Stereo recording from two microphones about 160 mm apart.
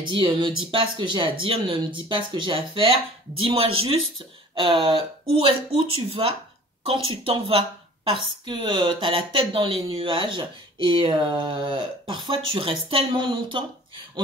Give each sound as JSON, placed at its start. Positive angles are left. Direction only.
{"t": 0.1, "sound": "speech", "side_deg": -30}
{"t": 5.3, "sound": "a woman's voice", "side_deg": -35}